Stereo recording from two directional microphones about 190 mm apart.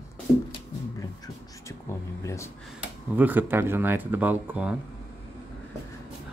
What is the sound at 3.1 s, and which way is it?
Speech, 10° right (ahead or behind).